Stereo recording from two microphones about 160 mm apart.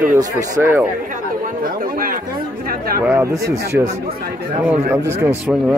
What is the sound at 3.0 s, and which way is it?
A man's voice, 15° right (ahead or behind).